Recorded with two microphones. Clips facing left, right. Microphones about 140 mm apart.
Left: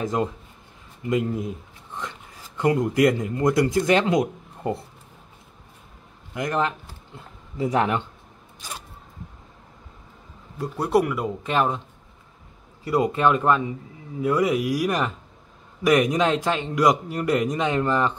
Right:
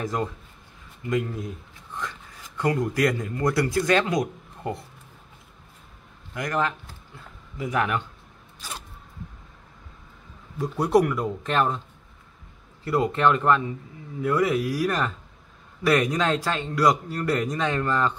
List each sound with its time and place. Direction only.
0.0 s speech: 20° left (ahead or behind)
6.3 s speech: 25° left (ahead or behind)
10.6 s speech: centre (ahead or behind)
12.8 s a man's voice: 15° left (ahead or behind)